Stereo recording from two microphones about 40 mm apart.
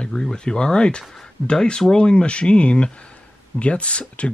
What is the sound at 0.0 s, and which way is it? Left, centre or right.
Speech, centre.